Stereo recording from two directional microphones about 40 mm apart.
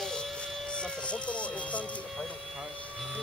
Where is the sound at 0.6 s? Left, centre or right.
Left.